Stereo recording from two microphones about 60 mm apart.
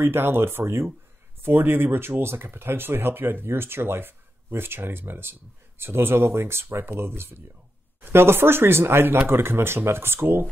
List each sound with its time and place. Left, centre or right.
0.0 s speech: right